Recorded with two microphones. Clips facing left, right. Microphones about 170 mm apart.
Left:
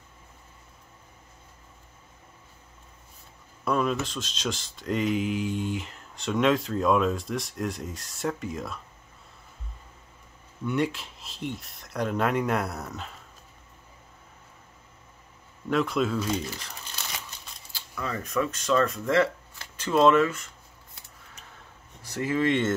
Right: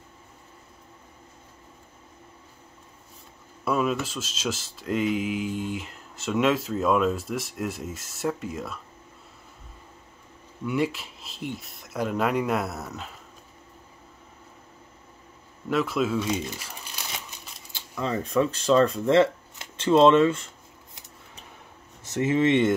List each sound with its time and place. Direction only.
3.6 s speech: 5° right (ahead or behind)
10.6 s speech: 5° right (ahead or behind)
15.7 s speech: centre (ahead or behind)
16.5 s crumpling: 10° right (ahead or behind)
17.7 s speech: 25° right (ahead or behind)
22.0 s speech: 20° right (ahead or behind)